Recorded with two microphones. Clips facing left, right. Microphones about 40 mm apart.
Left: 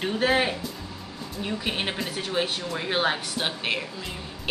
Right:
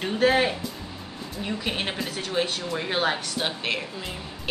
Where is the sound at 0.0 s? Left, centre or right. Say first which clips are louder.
Right 2 dB; centre.